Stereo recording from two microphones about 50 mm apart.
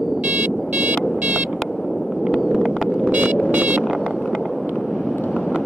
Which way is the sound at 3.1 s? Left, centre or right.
Right.